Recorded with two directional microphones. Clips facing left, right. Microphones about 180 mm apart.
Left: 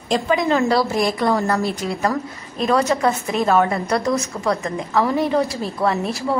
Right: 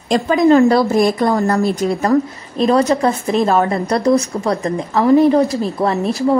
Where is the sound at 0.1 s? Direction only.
45° right (ahead or behind).